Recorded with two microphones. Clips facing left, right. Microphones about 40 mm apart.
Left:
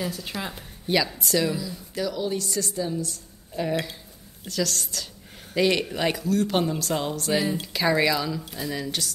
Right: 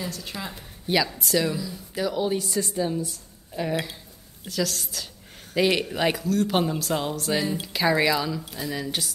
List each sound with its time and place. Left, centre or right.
0.0 s a woman's voice: centre
0.8 s speech: centre
2.0 s a woman's voice: centre
3.1 s speech: centre